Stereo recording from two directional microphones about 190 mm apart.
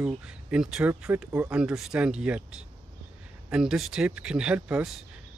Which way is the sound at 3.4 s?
5° right (ahead or behind).